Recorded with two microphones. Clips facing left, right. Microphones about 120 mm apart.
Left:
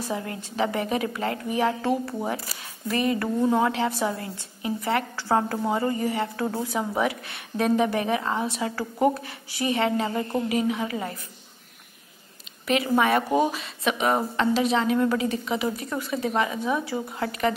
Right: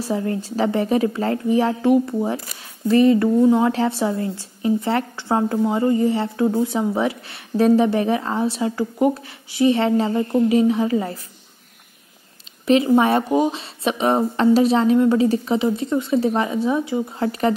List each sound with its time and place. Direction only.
0.0 s speech: 35° right (ahead or behind)
1.8 s a woman's voice: 20° right (ahead or behind)
12.6 s a woman's voice: 30° right (ahead or behind)
13.3 s speech: 20° right (ahead or behind)
13.6 s speech: 30° right (ahead or behind)